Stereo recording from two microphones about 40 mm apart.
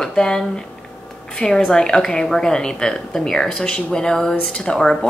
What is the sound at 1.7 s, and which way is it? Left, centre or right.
Speech, centre.